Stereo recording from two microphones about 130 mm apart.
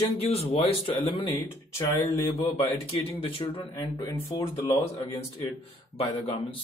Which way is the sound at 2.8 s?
50° left (ahead or behind).